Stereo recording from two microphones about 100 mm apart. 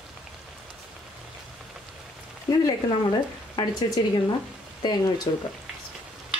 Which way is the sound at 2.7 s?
45° left (ahead or behind).